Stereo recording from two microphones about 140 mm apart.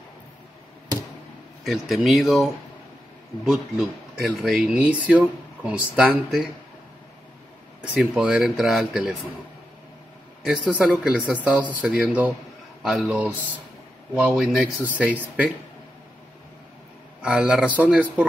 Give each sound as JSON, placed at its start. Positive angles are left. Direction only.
{"t": 1.6, "sound": "speech", "side_deg": 0}
{"t": 7.9, "sound": "speech", "side_deg": -5}
{"t": 10.4, "sound": "speech", "side_deg": -5}
{"t": 17.2, "sound": "speech", "side_deg": -10}